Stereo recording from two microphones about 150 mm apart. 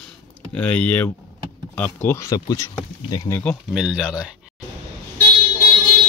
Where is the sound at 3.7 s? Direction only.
5° right (ahead or behind).